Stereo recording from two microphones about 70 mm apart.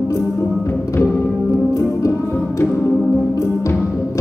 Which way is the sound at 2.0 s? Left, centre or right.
Left.